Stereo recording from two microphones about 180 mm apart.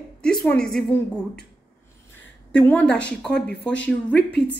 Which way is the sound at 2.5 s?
5° left (ahead or behind).